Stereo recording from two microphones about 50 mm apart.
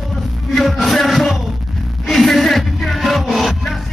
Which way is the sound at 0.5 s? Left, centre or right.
Centre.